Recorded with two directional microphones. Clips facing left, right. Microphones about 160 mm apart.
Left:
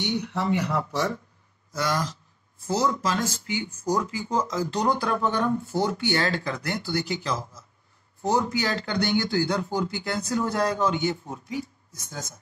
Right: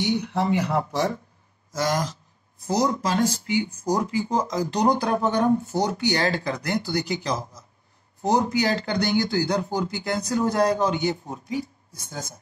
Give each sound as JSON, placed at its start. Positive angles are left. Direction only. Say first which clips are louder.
{"t": 0.0, "sound": "a man's voice", "louder": "right 3 dB", "side_deg": -30}
{"t": 1.9, "sound": "a man's voice", "louder": "right 2 dB", "side_deg": -40}